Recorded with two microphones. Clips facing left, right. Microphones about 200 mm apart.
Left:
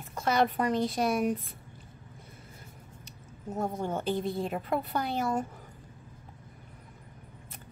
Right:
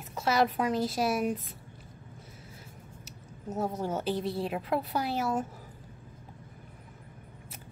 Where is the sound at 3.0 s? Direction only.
5° right (ahead or behind).